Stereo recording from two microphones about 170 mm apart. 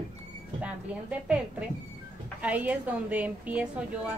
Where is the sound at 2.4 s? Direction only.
10° right (ahead or behind).